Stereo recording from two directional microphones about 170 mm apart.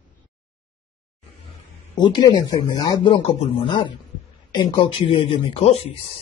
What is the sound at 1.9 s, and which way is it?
A man's voice, 25° left (ahead or behind).